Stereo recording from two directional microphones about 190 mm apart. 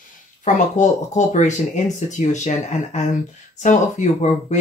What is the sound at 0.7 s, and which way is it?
Speech, 40° left (ahead or behind).